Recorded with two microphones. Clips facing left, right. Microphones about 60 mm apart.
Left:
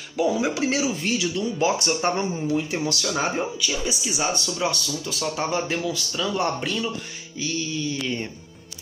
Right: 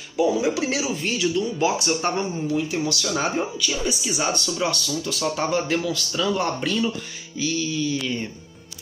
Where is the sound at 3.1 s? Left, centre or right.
Centre.